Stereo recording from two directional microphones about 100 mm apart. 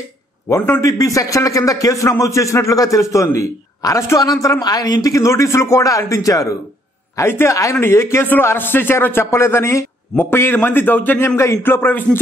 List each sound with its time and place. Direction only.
0.5 s a woman's voice: 25° left (ahead or behind)